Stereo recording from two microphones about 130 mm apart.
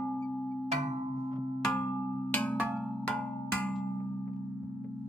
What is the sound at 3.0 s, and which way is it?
Cowbell, 10° left (ahead or behind).